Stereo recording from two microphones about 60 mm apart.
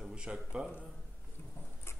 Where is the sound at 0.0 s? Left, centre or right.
Centre.